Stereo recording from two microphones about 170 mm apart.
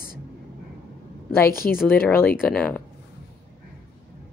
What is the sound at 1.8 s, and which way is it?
Speech, 10° left (ahead or behind).